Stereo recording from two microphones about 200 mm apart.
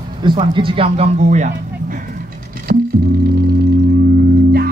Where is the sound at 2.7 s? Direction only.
50° right (ahead or behind).